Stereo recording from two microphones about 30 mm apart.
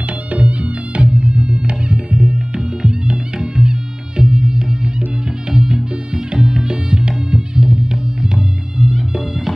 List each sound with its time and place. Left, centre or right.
0.3 s music: right
4.2 s music: right